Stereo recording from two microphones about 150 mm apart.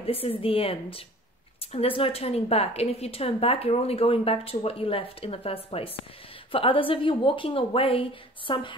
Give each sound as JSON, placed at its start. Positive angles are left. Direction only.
{"t": 0.0, "sound": "a woman's voice", "side_deg": 40}